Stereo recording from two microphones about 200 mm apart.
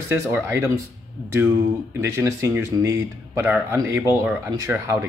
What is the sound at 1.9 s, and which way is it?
Speech, 15° right (ahead or behind).